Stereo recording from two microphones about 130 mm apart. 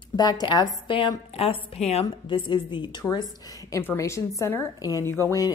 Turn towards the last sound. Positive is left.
turn(degrees=25)  # may be behind; listen again after turning